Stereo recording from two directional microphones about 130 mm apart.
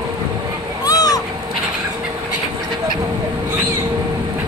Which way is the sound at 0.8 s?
30° left (ahead or behind).